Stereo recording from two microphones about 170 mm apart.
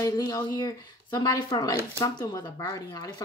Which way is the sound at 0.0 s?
20° left (ahead or behind).